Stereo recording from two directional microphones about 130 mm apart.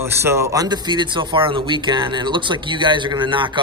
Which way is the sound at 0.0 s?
20° right (ahead or behind).